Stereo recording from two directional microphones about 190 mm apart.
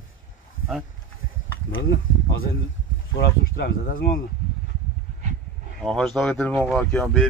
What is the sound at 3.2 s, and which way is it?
Speech, 55° left (ahead or behind).